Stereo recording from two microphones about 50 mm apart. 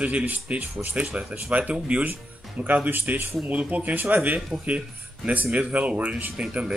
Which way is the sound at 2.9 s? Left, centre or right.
Right.